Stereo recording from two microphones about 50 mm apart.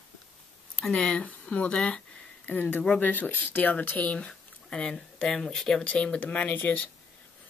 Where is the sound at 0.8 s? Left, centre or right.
Left.